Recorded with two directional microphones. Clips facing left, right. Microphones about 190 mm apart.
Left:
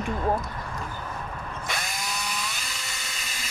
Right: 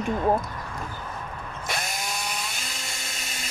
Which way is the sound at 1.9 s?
50° right (ahead or behind).